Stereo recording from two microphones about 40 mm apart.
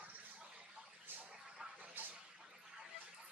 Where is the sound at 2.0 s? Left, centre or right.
Right.